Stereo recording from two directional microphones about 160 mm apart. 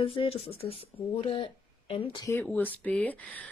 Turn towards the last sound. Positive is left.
turn(degrees=10)  # may be behind; listen again after turning